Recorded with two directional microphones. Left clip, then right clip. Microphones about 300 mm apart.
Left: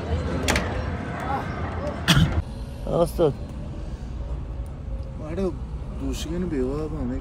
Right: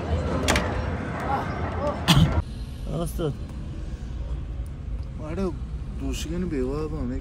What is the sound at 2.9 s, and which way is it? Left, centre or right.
Speech, left.